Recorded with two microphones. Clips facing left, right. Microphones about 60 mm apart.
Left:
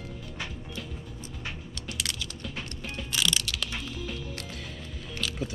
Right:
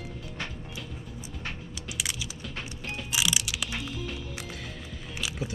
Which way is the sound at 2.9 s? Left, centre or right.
Centre.